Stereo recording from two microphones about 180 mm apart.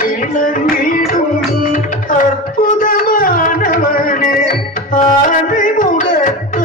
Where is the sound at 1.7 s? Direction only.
45° left (ahead or behind).